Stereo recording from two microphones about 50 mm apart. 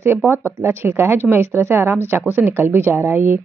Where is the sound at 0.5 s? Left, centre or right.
Right.